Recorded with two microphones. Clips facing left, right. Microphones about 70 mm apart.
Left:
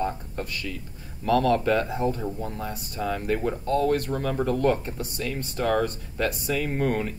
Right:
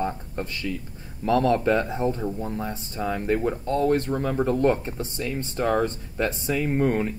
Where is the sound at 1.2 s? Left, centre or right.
Right.